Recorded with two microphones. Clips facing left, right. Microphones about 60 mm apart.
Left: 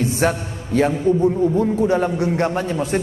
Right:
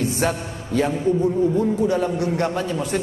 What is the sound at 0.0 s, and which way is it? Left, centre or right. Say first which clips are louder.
A man's voice: left 3 dB; left.